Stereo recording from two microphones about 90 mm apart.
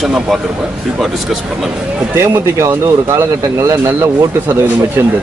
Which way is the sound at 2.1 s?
30° right (ahead or behind).